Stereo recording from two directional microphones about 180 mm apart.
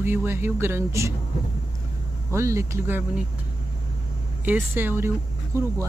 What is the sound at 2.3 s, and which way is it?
Speech, 15° right (ahead or behind).